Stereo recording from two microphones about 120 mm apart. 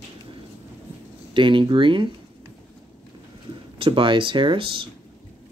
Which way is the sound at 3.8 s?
45° right (ahead or behind).